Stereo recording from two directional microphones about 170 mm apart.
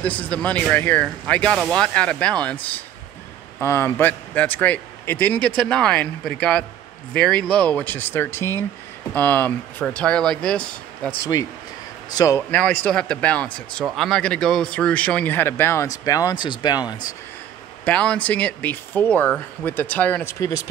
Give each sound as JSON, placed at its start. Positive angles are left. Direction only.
{"t": 0.0, "sound": "speech", "side_deg": 10}
{"t": 3.6, "sound": "speech", "side_deg": 15}
{"t": 12.1, "sound": "a man's voice", "side_deg": 20}
{"t": 12.4, "sound": "speech", "side_deg": 10}
{"t": 17.8, "sound": "speech", "side_deg": 5}